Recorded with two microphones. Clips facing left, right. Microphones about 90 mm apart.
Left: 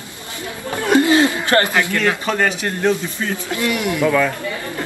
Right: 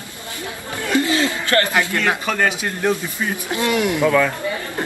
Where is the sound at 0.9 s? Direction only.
25° left (ahead or behind).